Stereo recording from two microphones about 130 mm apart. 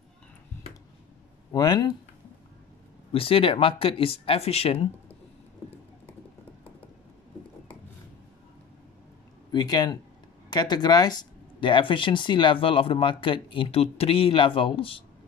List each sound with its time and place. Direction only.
1.5 s speech: 30° left (ahead or behind)
3.1 s speech: 45° left (ahead or behind)
9.5 s speech: 30° left (ahead or behind)